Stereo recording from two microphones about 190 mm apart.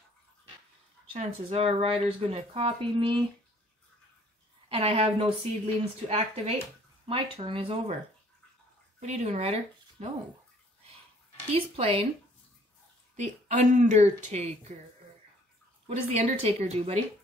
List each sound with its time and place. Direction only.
1.1 s speech: 35° right (ahead or behind)
4.6 s speech: 30° right (ahead or behind)
9.0 s speech: 35° right (ahead or behind)
11.5 s speech: 30° right (ahead or behind)
13.1 s speech: 40° right (ahead or behind)
15.9 s speech: 30° right (ahead or behind)